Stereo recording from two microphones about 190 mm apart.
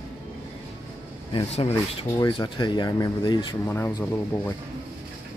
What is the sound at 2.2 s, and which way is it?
Speech, 25° left (ahead or behind).